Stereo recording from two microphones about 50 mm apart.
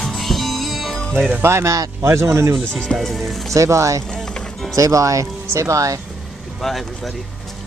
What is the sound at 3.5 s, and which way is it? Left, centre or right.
Speech, right.